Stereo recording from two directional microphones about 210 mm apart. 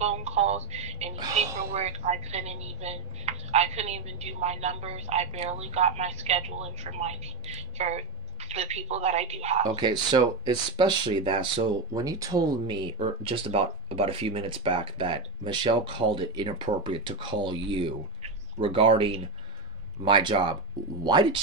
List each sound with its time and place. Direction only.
0.0 s telephone: 30° right (ahead or behind)
1.3 s a woman's voice: 30° right (ahead or behind)
9.8 s speech: 20° right (ahead or behind)